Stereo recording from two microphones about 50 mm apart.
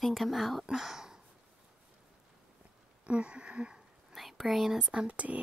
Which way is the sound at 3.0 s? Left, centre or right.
Right.